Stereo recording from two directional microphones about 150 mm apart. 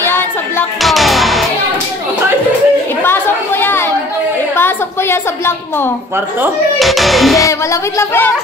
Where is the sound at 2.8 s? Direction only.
15° left (ahead or behind).